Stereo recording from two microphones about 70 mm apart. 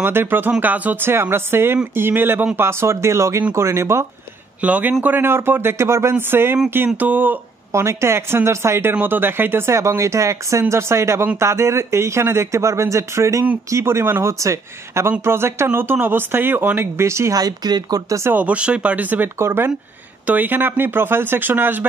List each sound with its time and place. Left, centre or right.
0.0 s speech: right
1.1 s speech: right
4.6 s speech: right
7.7 s speech: right
17.4 s speech: right
18.3 s speech: right
19.3 s speech: right
20.2 s speech: right